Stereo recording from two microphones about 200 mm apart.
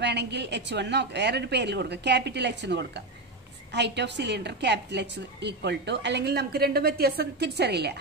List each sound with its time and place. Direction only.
0.0 s a woman's voice: 60° right (ahead or behind)